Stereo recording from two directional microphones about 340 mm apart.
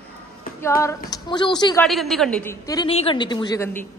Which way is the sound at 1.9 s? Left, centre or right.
Centre.